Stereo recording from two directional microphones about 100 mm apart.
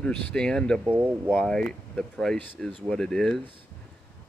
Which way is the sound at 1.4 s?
5° left (ahead or behind).